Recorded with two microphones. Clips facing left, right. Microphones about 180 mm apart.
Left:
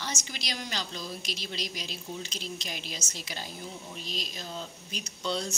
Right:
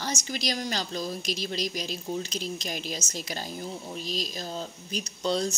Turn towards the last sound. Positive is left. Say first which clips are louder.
# right 5 dB
turn(degrees=-40)  # may be behind; listen again after turning